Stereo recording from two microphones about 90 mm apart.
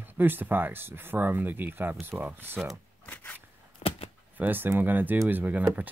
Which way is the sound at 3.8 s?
90° left.